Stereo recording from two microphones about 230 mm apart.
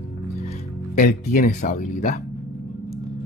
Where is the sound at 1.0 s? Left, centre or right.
Left.